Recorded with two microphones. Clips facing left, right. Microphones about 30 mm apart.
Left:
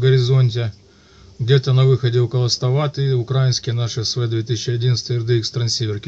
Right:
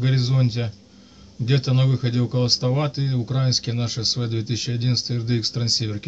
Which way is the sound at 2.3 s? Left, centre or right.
Left.